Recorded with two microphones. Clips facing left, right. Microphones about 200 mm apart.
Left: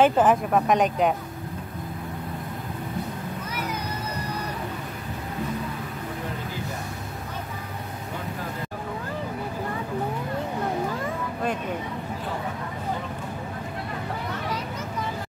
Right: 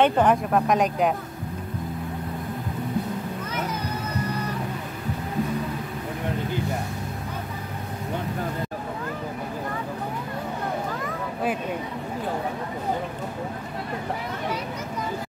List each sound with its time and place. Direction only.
0.0 s speech: centre (ahead or behind)